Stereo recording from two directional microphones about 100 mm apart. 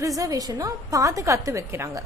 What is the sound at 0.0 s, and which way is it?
A woman's voice, 35° right (ahead or behind).